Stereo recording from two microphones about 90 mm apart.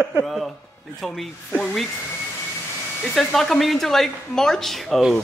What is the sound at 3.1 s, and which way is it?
Speech, 5° left (ahead or behind).